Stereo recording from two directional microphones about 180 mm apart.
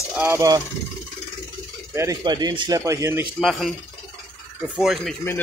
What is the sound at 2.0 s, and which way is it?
Speech, 20° right (ahead or behind).